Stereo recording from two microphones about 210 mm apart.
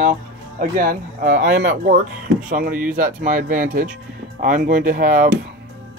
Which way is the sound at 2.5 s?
40° right (ahead or behind).